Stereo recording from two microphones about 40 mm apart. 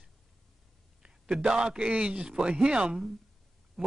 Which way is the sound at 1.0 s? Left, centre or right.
Right.